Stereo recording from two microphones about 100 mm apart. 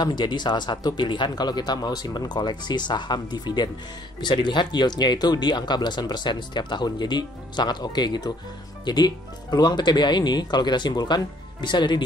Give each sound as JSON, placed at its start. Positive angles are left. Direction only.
{"t": 0.0, "sound": "speech", "side_deg": 50}